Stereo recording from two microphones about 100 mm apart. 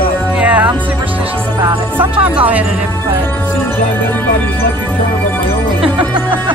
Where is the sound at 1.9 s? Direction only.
10° right (ahead or behind).